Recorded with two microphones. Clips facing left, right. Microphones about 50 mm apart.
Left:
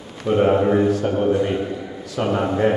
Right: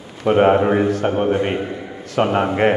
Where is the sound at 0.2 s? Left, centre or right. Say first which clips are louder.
Right 3 dB; right.